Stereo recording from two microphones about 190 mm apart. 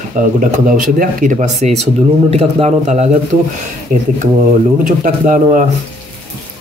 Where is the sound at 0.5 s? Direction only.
45° right (ahead or behind).